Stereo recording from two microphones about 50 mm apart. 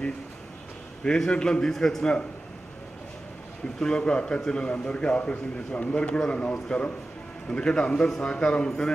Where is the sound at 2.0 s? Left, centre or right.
Centre.